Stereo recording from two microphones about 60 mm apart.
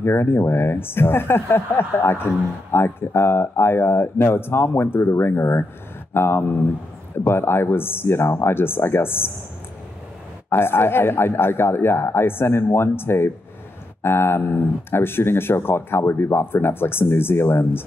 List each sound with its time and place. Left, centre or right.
0.0 s speech: left
10.5 s speech: left